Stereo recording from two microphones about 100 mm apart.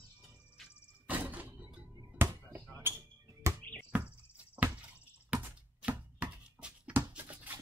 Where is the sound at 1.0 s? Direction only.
15° right (ahead or behind).